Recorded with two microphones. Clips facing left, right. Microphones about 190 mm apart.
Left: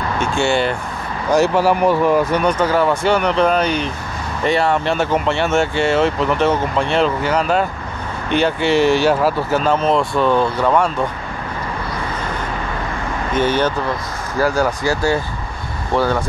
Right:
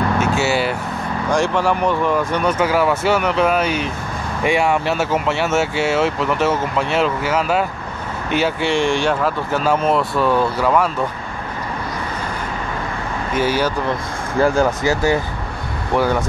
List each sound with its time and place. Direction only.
0.2 s speech: 5° right (ahead or behind)
1.3 s speech: 5° left (ahead or behind)
2.5 s speech: 5° right (ahead or behind)
13.3 s speech: 5° right (ahead or behind)
14.4 s speech: 25° right (ahead or behind)